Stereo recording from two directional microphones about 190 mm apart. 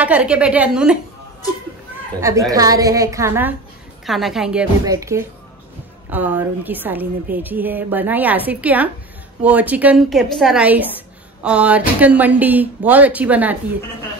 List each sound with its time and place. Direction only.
0.0 s speech: 5° right (ahead or behind)
2.1 s speech: 15° right (ahead or behind)
4.0 s a woman's voice: centre (ahead or behind)
4.8 s speech: 15° right (ahead or behind)